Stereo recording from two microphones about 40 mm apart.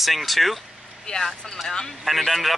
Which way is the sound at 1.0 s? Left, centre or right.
Centre.